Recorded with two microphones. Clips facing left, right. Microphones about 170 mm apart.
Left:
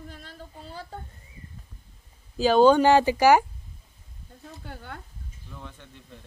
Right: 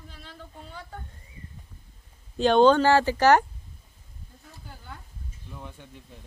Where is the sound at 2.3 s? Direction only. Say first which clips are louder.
Left 1 dB; 5° left (ahead or behind).